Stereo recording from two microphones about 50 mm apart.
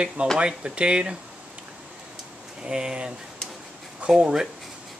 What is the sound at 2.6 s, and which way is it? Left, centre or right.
Speech, centre.